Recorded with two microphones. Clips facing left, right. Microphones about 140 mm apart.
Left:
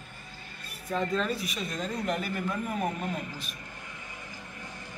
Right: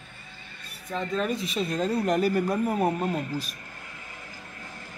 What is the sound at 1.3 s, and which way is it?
Speech, 30° right (ahead or behind).